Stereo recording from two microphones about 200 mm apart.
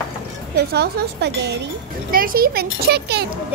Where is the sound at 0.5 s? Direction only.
55° right (ahead or behind).